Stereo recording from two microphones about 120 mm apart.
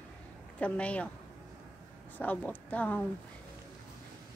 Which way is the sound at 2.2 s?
15° left (ahead or behind).